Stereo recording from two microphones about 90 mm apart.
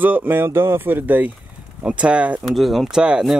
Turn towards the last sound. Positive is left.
turn(degrees=-10)  # may be behind; listen again after turning